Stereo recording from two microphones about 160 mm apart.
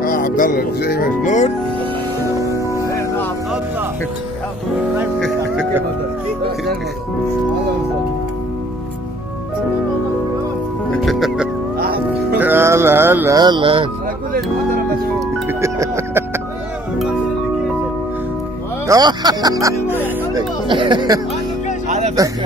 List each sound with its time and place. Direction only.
0.0 s speech: 60° left (ahead or behind); by 1.1 s 75° left (ahead or behind)
1.2 s speech: 50° left (ahead or behind)
2.3 s music: 20° right (ahead or behind)
2.7 s music: 20° left (ahead or behind)
10.9 s music: centre (ahead or behind)
12.4 s music: 15° right (ahead or behind)
13.4 s speech: 30° right (ahead or behind)
15.4 s music: 15° right (ahead or behind)
18.9 s speech: 25° right (ahead or behind)
20.3 s speech: 30° right (ahead or behind)
21.8 s music: 45° right (ahead or behind)